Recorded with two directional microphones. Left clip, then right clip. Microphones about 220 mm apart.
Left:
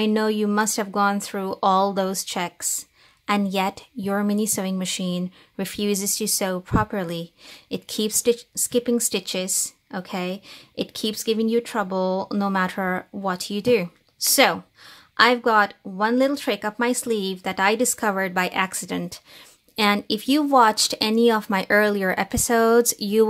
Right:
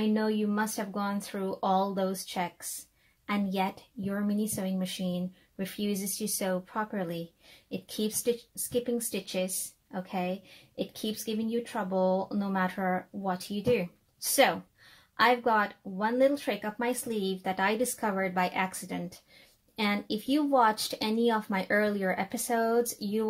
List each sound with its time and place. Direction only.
0.0 s speech: 35° left (ahead or behind)